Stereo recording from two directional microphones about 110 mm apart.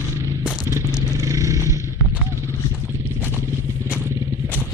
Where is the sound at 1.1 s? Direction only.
30° right (ahead or behind).